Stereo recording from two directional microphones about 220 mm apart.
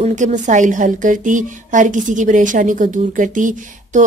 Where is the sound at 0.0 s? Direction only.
35° right (ahead or behind).